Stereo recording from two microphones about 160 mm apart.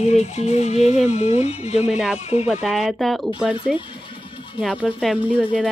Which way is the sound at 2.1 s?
40° left (ahead or behind).